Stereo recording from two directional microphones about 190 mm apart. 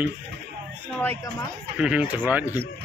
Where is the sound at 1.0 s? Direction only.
10° left (ahead or behind).